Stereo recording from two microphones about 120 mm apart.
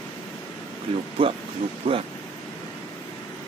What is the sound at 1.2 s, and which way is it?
Speech, 45° right (ahead or behind).